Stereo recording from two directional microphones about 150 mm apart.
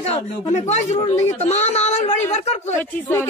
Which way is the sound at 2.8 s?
15° left (ahead or behind).